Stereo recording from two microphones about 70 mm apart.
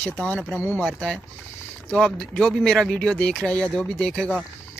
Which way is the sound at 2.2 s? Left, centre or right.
Centre.